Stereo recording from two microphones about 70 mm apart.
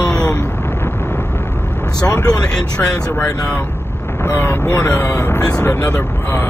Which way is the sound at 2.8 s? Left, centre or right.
Left.